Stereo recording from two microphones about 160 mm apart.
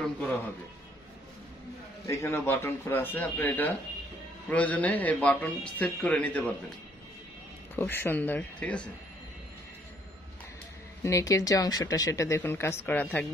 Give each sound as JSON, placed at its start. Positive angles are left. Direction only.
{"t": 0.0, "sound": "a man's voice", "side_deg": 10}
{"t": 2.0, "sound": "a man's voice", "side_deg": 15}
{"t": 7.7, "sound": "a man's voice", "side_deg": 15}
{"t": 11.1, "sound": "speech", "side_deg": 20}